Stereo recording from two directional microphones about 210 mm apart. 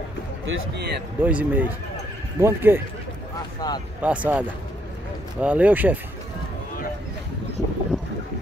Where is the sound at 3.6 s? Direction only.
20° left (ahead or behind).